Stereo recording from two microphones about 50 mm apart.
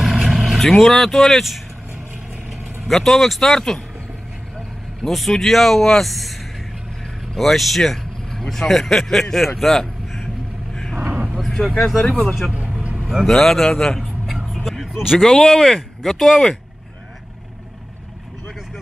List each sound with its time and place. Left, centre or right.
0.1 s vehicle: centre
0.6 s speech: centre
2.9 s speech: centre
5.0 s speech: centre
7.3 s speech: centre
9.8 s vehicle: centre
11.0 s vehicle: right
11.3 s vehicle: centre
11.8 s speech: centre
12.5 s vehicle: right
13.2 s speech: centre
13.9 s vehicle: centre
15.1 s speech: centre